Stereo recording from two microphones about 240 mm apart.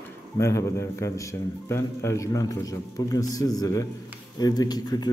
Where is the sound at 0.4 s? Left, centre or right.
Centre.